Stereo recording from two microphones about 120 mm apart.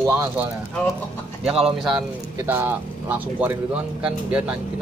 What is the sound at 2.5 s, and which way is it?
Speech, 15° right (ahead or behind).